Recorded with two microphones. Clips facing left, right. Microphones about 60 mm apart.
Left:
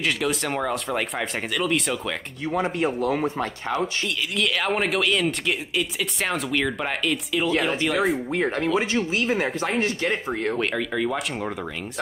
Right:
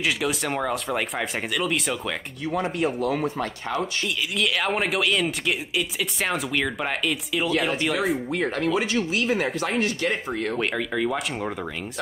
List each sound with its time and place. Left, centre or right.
0.0 s speech: centre
2.8 s speech: left
4.4 s speech: centre
8.3 s speech: left
10.6 s speech: centre